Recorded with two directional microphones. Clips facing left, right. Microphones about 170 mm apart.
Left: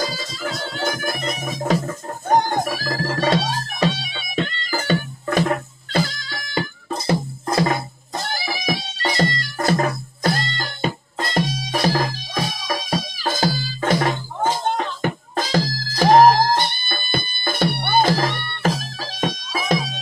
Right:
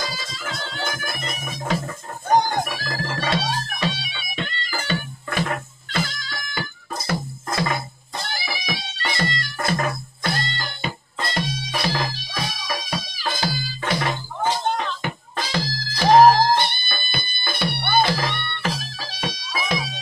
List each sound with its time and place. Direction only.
0.0 s music: 40° left (ahead or behind)